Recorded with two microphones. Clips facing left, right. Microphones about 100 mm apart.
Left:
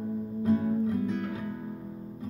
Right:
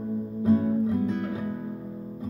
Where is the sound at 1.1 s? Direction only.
20° right (ahead or behind).